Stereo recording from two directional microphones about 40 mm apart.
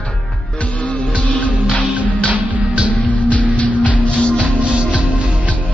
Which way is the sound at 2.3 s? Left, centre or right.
Right.